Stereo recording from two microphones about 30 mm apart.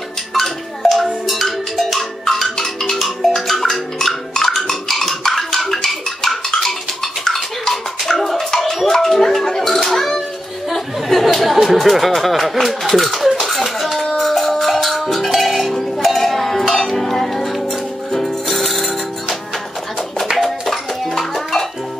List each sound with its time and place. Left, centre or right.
0.3 s music: centre
2.3 s music: centre
9.5 s a sound: centre
12.6 s speech: centre
13.4 s music: centre
20.3 s music: centre